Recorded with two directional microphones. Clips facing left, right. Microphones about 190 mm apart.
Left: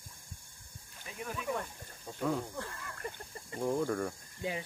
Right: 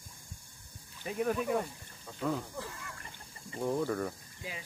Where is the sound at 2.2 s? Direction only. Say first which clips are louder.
Left 1 dB; centre (ahead or behind).